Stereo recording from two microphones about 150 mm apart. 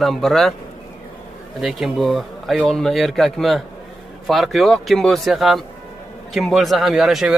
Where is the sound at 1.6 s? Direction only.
Centre (ahead or behind).